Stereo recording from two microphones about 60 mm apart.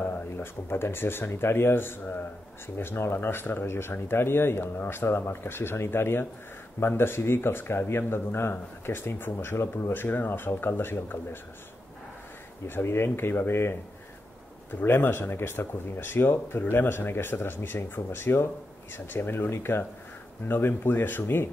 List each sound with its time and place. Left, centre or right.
0.0 s speech: left
12.6 s speech: left